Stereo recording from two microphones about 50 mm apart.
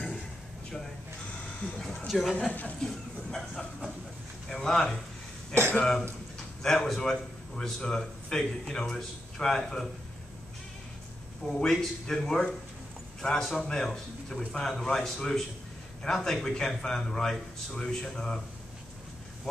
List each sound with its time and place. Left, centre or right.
1.6 s a man's voice: centre
2.0 s speech: centre
2.3 s speech: left
2.9 s a sound: centre
4.5 s speech: centre
5.5 s speech: right
5.8 s a man's voice: centre
11.4 s a man's voice: centre